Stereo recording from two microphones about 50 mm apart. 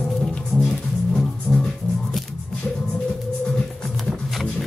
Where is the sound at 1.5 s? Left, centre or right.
Left.